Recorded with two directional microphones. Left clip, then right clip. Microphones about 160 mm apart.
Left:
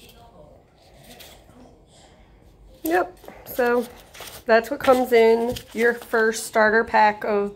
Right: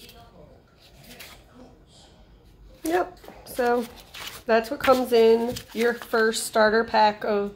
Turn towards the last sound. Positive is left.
turn(degrees=5)  # may be behind; listen again after turning